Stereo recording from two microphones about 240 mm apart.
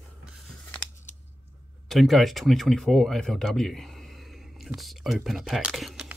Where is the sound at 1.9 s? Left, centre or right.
Centre.